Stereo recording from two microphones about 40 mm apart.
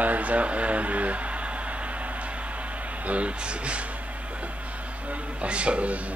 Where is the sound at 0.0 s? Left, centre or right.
Right.